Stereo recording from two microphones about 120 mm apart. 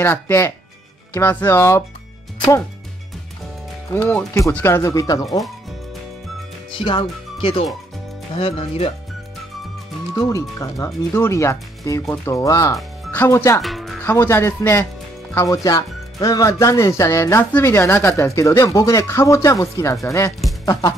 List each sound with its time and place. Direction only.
0.0 s speech: 20° left (ahead or behind)
3.9 s speech: 15° left (ahead or behind)
6.7 s speech: 45° left (ahead or behind)
10.1 s speech: 30° left (ahead or behind)
13.6 s speech: centre (ahead or behind)
14.0 s speech: 25° left (ahead or behind)